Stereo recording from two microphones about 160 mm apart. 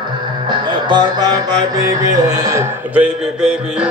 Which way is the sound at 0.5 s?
30° right (ahead or behind).